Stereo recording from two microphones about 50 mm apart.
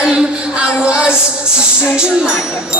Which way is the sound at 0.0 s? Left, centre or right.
Centre.